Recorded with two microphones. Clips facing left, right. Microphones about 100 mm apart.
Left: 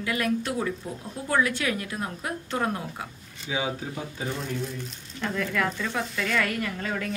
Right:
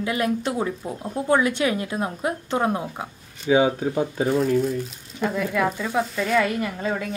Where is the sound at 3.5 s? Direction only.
45° right (ahead or behind).